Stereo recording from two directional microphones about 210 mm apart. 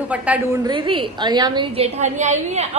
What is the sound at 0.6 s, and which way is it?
A woman's voice, 25° right (ahead or behind).